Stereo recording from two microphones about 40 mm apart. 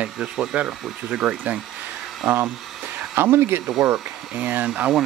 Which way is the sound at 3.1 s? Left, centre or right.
Right.